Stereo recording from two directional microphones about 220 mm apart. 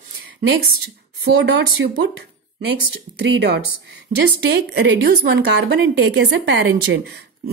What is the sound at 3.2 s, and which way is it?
A woman's voice, 50° right (ahead or behind).